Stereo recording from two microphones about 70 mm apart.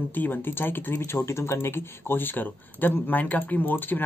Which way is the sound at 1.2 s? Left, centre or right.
Left.